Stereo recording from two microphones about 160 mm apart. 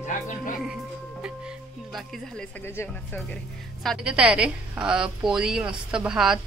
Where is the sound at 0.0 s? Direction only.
55° left (ahead or behind).